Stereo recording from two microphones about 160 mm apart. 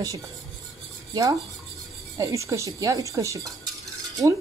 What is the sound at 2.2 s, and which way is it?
Speech, 20° right (ahead or behind).